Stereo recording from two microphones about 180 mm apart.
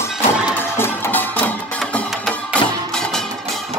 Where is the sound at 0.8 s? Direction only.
10° left (ahead or behind).